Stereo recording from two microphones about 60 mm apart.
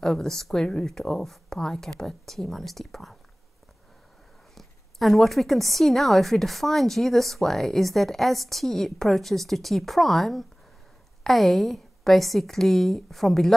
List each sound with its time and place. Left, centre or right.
0.0 s a woman's voice: centre
4.6 s a woman's voice: centre